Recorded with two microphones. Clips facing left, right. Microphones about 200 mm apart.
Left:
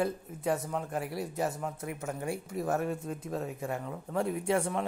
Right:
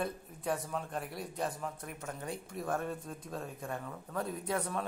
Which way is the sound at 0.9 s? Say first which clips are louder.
Left 5 dB; 75° left (ahead or behind).